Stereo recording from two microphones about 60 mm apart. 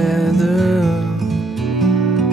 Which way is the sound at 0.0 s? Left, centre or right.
Centre.